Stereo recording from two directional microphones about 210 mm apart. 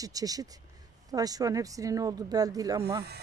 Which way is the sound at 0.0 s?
15° right (ahead or behind).